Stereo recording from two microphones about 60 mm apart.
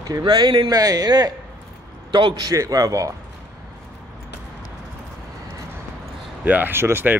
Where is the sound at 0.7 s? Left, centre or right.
Right.